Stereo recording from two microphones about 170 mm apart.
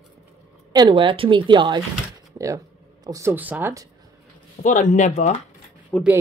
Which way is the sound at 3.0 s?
15° right (ahead or behind).